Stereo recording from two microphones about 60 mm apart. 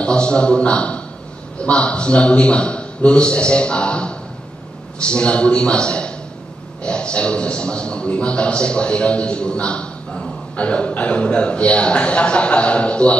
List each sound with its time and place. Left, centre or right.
0.0 s a man's voice: centre